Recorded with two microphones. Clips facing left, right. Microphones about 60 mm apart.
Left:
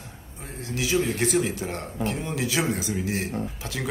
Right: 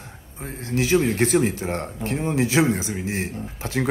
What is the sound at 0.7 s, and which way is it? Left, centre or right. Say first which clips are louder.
A man's voice: right 5 dB; right.